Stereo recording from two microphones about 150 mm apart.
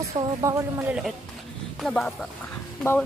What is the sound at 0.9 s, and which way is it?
Speech, 5° right (ahead or behind).